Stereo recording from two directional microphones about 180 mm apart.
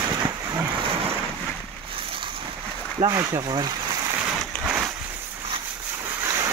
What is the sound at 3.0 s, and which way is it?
Speech, 20° right (ahead or behind).